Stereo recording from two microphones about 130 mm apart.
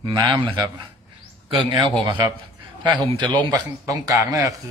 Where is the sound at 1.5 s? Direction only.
40° right (ahead or behind).